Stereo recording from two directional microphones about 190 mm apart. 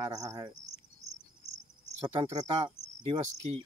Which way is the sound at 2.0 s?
20° right (ahead or behind).